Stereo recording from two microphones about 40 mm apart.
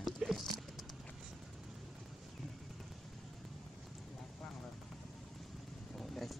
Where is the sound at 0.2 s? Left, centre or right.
Centre.